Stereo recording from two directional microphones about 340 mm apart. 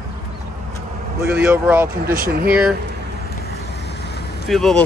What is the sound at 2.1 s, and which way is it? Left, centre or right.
Speech, right.